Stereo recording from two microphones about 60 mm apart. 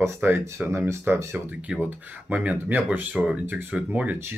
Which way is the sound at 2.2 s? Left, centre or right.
Right.